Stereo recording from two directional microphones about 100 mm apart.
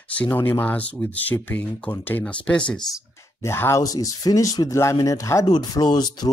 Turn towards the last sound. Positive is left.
turn(degrees=45)  # may be behind; listen again after turning